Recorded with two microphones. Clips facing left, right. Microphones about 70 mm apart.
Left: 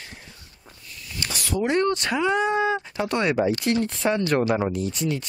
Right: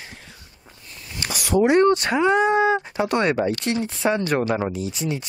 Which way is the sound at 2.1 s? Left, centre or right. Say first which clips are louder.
Right 4 dB; centre.